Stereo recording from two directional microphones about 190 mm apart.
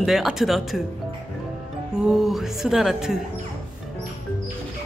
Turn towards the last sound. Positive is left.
turn(degrees=0)  # may be behind; listen again after turning